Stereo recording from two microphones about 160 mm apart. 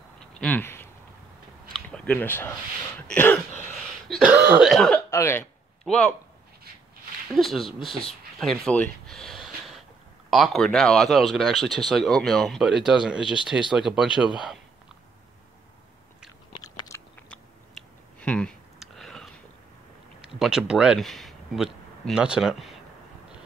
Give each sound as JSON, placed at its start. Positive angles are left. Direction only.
{"t": 0.3, "sound": "a sound", "side_deg": 10}
{"t": 3.1, "sound": "throat clearing", "side_deg": 10}
{"t": 4.1, "sound": "cough", "side_deg": -5}
{"t": 5.1, "sound": "a man's voice", "side_deg": 15}
{"t": 7.3, "sound": "speech", "side_deg": 0}
{"t": 16.5, "sound": "biting", "side_deg": 25}
{"t": 17.3, "sound": "clicking", "side_deg": 5}
{"t": 20.2, "sound": "speech", "side_deg": -5}